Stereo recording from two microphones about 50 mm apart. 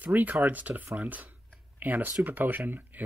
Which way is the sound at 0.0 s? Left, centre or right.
Right.